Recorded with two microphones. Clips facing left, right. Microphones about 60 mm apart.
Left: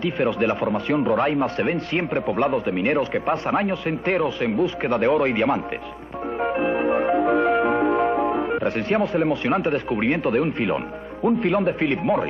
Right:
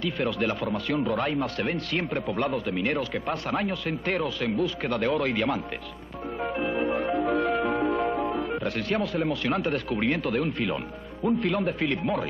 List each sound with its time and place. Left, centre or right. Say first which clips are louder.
0.0 s speech: left 6 dB; left
6.4 s music: left 6 dB; left
8.6 s speech: left 6 dB; left